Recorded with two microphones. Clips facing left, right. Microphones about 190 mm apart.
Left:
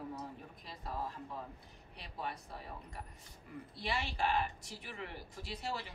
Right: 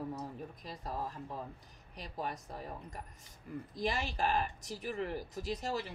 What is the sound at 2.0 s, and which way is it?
Speech, 40° right (ahead or behind).